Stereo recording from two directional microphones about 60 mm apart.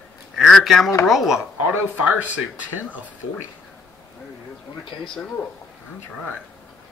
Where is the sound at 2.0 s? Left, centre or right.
Right.